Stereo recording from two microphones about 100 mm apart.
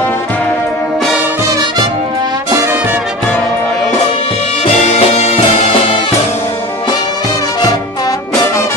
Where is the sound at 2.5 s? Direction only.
30° right (ahead or behind).